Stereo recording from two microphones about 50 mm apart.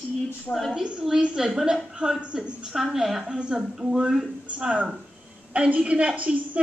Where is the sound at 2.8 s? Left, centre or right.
Centre.